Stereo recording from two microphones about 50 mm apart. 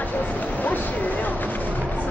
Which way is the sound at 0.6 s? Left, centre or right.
Left.